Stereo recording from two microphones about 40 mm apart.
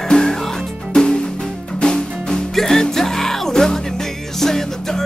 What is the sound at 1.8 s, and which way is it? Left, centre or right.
Music, left.